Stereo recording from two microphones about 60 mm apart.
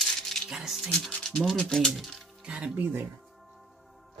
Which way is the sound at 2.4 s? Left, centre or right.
Centre.